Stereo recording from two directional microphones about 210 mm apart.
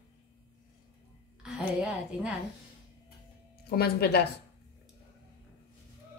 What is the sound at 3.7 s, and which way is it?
Speech, 50° left (ahead or behind).